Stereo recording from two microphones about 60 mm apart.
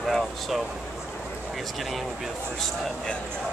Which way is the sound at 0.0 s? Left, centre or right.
Centre.